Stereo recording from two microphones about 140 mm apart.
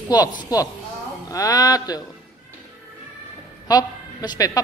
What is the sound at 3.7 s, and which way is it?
Speech, 25° left (ahead or behind).